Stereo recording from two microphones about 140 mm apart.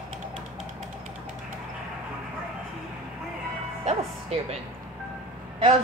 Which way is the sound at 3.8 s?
50° right (ahead or behind).